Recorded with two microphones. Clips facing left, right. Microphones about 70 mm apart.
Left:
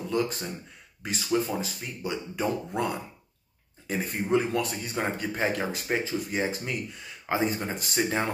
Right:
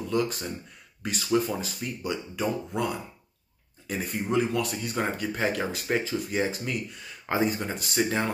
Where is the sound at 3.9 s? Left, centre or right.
Left.